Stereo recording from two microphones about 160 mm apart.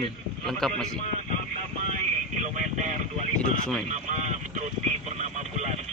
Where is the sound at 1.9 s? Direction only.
50° right (ahead or behind).